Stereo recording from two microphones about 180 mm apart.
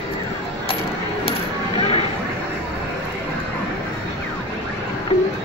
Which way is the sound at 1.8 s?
35° left (ahead or behind).